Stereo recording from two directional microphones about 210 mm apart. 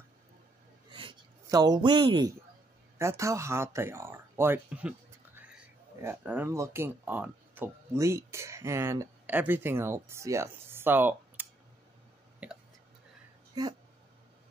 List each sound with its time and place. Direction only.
0.9 s a sound: 20° right (ahead or behind)
3.0 s speech: 15° right (ahead or behind)
12.4 s whispering: 5° right (ahead or behind)
13.5 s speech: 20° right (ahead or behind)